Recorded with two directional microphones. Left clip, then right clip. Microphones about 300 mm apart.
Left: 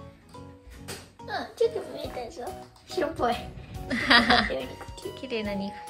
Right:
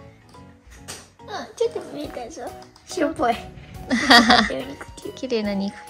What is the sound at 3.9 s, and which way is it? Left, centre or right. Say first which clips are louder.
Speech: right 6 dB; centre.